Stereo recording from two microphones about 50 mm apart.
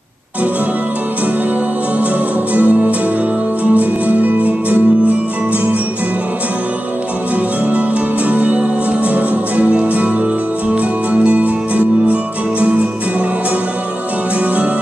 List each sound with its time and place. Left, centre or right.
2.5 s music: right
8.3 s music: right